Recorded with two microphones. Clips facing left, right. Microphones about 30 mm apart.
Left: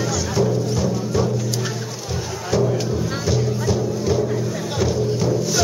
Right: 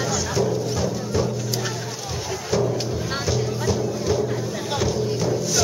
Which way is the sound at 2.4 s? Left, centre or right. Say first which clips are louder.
Left 3 dB; centre.